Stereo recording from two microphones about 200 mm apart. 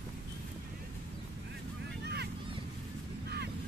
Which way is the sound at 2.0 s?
55° right (ahead or behind).